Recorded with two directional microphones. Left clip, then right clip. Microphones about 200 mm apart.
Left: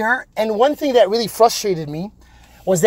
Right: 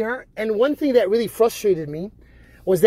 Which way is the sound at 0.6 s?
5° left (ahead or behind).